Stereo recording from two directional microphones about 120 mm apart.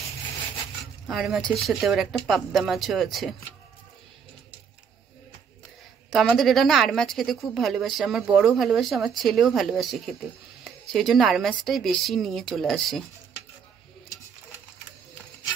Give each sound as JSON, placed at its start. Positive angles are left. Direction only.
{"t": 1.0, "sound": "a woman's voice", "side_deg": -5}
{"t": 6.0, "sound": "a woman's voice", "side_deg": 0}